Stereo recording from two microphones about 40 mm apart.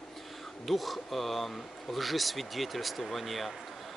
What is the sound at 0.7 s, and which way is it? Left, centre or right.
Speech, centre.